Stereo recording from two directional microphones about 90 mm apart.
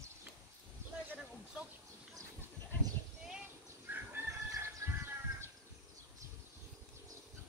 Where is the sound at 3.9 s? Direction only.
25° right (ahead or behind).